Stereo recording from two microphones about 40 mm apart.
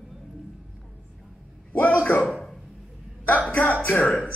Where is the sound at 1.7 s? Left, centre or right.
Left.